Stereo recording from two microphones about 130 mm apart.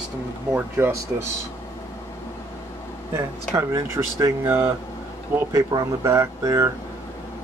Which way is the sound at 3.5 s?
25° right (ahead or behind).